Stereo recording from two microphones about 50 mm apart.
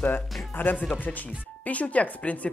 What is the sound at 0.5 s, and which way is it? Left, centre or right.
Speech, left.